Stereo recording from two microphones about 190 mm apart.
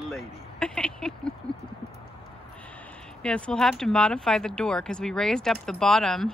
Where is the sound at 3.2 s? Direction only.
5° left (ahead or behind).